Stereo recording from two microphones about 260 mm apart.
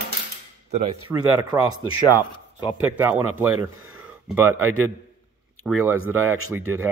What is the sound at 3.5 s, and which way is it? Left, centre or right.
Speech, right.